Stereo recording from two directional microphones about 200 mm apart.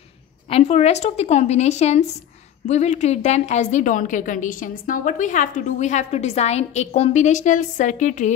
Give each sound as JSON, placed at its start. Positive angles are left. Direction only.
{"t": 0.5, "sound": "a woman's voice", "side_deg": 30}